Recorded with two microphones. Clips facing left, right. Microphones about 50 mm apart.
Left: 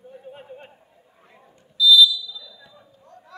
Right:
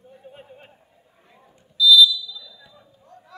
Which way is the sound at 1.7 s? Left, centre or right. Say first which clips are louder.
Right 1 dB; centre.